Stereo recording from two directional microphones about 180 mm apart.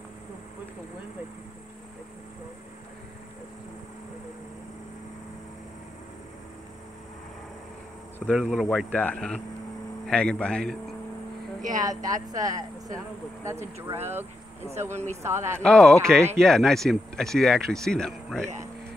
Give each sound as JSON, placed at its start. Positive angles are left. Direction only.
{"t": 8.3, "sound": "speech", "side_deg": 0}
{"t": 11.8, "sound": "speech", "side_deg": -20}
{"t": 15.6, "sound": "speech", "side_deg": 5}